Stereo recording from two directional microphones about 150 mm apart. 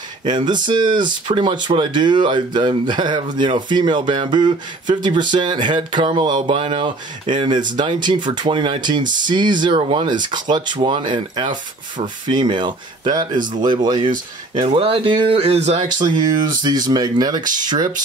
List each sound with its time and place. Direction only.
0.2 s speech: 30° right (ahead or behind)
16.0 s speech: 30° right (ahead or behind)